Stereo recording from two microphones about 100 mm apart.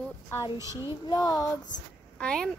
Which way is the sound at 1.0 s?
40° left (ahead or behind).